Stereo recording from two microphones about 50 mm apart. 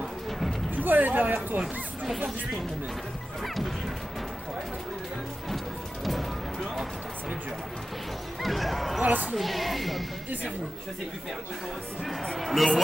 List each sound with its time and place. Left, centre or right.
0.7 s speech: right
3.4 s speech: centre
6.0 s music: centre
8.4 s speech: centre
9.0 s speech: right
9.3 s speech: centre
12.0 s speech: centre